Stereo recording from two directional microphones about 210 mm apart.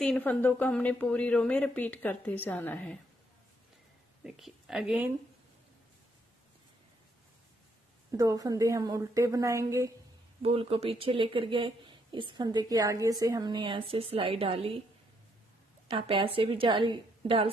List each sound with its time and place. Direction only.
0.0 s speech: 5° left (ahead or behind)
4.2 s speech: centre (ahead or behind)
8.1 s a woman's voice: 15° right (ahead or behind)
10.4 s speech: 25° right (ahead or behind)
15.9 s speech: 25° right (ahead or behind)